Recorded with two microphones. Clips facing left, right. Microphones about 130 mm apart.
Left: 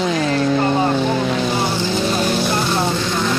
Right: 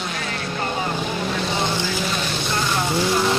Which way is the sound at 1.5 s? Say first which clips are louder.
Left 4 dB; 10° left (ahead or behind).